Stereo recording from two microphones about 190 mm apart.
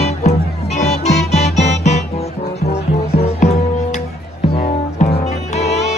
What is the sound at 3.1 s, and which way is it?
Music, 35° left (ahead or behind).